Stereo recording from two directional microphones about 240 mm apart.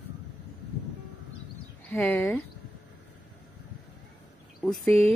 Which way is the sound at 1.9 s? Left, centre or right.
Centre.